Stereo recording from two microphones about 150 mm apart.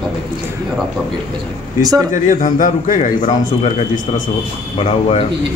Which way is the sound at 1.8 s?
25° right (ahead or behind).